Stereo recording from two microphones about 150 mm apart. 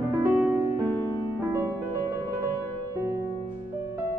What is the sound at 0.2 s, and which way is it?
Music, 15° right (ahead or behind).